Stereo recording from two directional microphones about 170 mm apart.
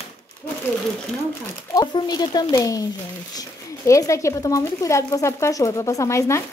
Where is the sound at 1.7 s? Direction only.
25° left (ahead or behind).